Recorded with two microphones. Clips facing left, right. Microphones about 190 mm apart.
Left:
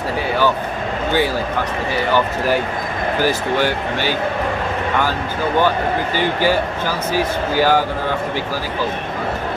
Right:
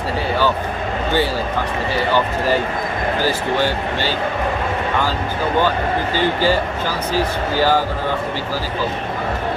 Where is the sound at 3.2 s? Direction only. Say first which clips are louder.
Left 2 dB; 15° left (ahead or behind).